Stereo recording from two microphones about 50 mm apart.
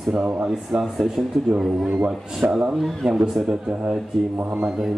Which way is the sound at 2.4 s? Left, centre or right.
Right.